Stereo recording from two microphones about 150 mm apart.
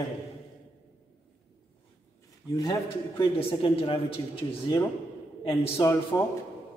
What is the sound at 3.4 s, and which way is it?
Speech, 35° left (ahead or behind).